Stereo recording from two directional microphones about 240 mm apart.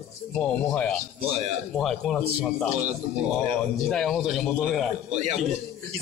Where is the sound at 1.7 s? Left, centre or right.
Centre.